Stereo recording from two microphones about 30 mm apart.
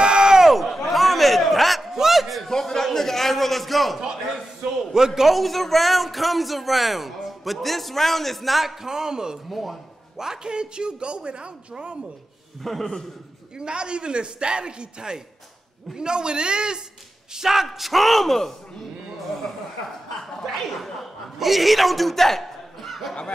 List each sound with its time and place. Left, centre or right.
0.0 s crowd: right
0.4 s a sound: centre
2.5 s a sound: centre
4.9 s a man's voice: centre
5.3 s speech: centre
8.8 s a man's voice: centre
9.5 s speech: centre
10.1 s a man's voice: centre
10.5 s a man's voice: right
12.6 s a man's voice: centre
13.6 s a man's voice: right
17.3 s a man's voice: centre
17.6 s speech: centre
20.4 s a man's voice: centre